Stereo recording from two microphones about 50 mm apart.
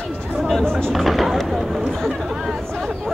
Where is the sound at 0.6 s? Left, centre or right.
Centre.